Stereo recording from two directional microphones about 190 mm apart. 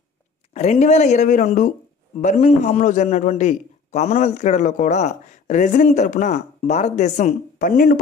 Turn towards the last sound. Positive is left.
turn(degrees=45)  # may be behind; listen again after turning